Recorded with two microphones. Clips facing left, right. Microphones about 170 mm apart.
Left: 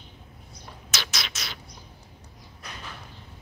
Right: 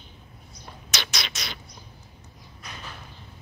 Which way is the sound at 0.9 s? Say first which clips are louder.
Right 1 dB; 5° left (ahead or behind).